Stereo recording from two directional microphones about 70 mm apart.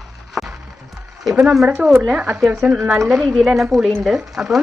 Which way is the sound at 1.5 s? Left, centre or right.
Centre.